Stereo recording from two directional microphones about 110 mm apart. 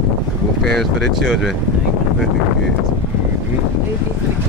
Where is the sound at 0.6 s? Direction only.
Centre (ahead or behind).